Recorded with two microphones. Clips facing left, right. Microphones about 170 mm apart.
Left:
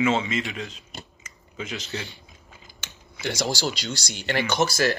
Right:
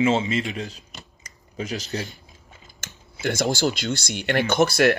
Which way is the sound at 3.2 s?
55° right (ahead or behind).